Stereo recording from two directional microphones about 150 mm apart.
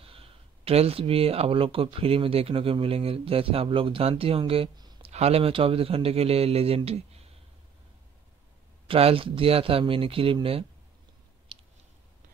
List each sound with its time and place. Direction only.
0.0 s speech: 40° right (ahead or behind)
4.7 s a sound: 25° right (ahead or behind)
5.0 s speech: 45° right (ahead or behind)
8.8 s speech: 40° right (ahead or behind)